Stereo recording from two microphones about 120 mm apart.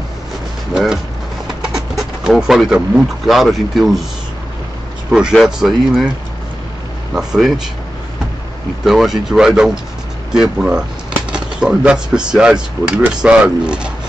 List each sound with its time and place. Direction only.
1.6 s speech: 5° right (ahead or behind)
5.1 s speech: 5° right (ahead or behind)
7.2 s speech: 5° right (ahead or behind)
8.8 s speech: centre (ahead or behind)